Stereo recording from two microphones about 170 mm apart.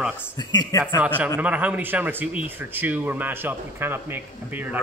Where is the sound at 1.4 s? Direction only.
10° right (ahead or behind).